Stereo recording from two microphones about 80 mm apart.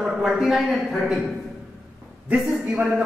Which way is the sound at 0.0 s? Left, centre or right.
Centre.